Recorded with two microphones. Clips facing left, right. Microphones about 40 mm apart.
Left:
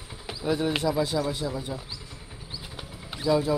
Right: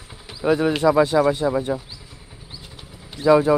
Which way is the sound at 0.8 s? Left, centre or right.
Right.